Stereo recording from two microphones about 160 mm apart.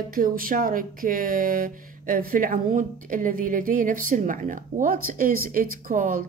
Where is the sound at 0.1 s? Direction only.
60° right (ahead or behind).